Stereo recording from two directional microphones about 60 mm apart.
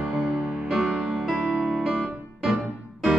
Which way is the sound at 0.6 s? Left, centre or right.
Centre.